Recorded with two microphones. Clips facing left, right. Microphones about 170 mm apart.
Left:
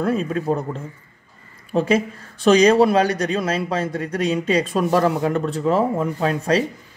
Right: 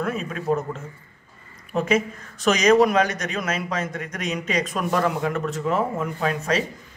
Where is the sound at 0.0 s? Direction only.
35° left (ahead or behind).